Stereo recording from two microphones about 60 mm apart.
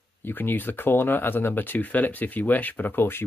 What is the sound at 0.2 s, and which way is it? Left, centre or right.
Speech, left.